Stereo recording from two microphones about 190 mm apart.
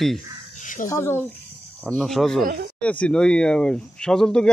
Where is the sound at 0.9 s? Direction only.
15° left (ahead or behind).